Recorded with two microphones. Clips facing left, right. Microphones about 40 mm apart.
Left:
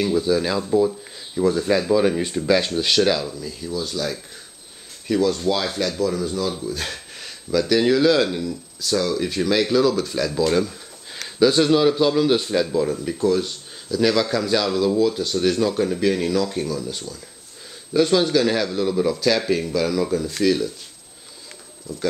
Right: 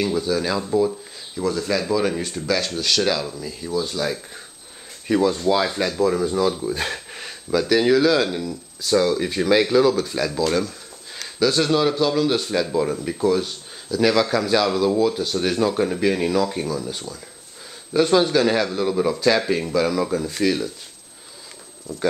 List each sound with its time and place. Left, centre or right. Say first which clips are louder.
0.0 s speech: left 2 dB; centre
0.6 s speech: left 1 dB; centre
1.3 s speech: left 4 dB; centre
3.0 s speech: left 2 dB; centre; by 6.5 s right
6.6 s a sound: right 3 dB; right
7.6 s speech: even; centre
12.7 s speech: even; centre